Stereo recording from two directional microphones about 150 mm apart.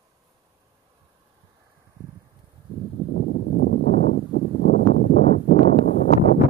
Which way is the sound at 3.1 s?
90° left.